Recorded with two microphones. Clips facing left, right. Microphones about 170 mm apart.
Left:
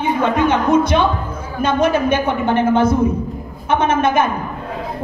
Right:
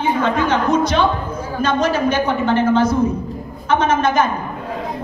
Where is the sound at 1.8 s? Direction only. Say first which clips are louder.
Left 3 dB; 55° left (ahead or behind).